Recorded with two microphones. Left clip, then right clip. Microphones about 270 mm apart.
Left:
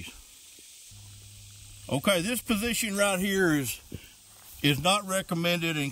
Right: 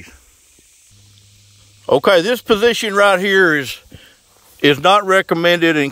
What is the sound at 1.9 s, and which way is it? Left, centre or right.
Speech, centre.